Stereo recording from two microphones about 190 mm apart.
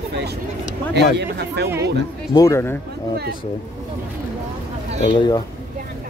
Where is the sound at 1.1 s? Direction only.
65° right (ahead or behind).